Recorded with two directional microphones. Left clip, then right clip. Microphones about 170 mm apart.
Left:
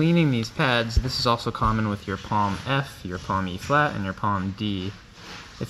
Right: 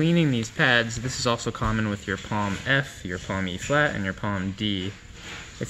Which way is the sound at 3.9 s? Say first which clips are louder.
Left 3 dB; 5° left (ahead or behind).